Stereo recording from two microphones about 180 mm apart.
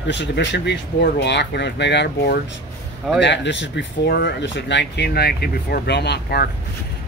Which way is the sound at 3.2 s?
75° left (ahead or behind).